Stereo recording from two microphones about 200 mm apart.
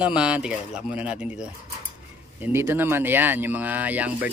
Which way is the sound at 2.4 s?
10° right (ahead or behind).